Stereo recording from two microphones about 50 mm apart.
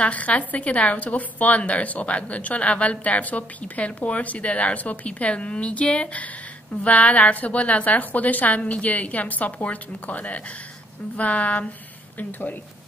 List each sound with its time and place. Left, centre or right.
0.0 s a woman's voice: left